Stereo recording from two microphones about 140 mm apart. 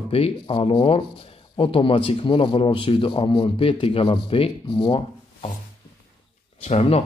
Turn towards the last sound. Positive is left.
turn(degrees=45)  # may be behind; listen again after turning